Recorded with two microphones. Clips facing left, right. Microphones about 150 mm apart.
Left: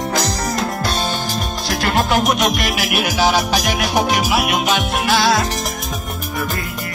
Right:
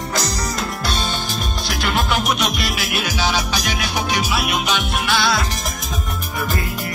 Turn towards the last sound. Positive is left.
turn(degrees=45)  # may be behind; listen again after turning